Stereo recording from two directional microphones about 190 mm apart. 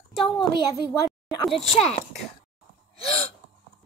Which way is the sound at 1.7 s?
35° left (ahead or behind).